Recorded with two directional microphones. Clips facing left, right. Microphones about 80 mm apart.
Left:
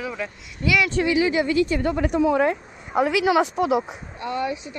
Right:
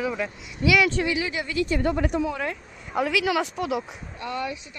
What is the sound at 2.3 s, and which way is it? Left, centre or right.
Speech, left.